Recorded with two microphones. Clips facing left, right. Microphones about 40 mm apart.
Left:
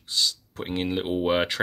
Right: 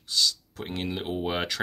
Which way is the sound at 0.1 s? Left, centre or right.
Left.